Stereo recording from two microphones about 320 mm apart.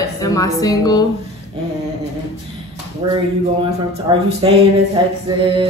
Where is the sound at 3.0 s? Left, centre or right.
Centre.